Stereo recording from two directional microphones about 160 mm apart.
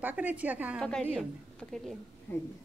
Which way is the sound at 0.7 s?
5° left (ahead or behind).